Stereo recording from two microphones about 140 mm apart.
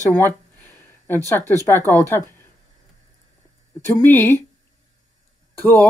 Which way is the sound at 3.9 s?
15° left (ahead or behind).